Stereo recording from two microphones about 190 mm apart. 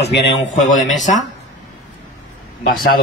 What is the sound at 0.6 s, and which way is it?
Speech, 40° left (ahead or behind).